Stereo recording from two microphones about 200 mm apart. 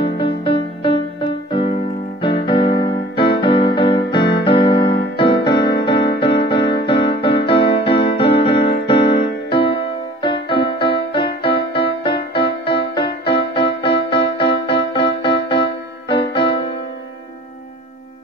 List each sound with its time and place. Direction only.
0.0 s music: 25° left (ahead or behind)
1.5 s keyboard: 30° left (ahead or behind)
2.2 s music: 25° left (ahead or behind)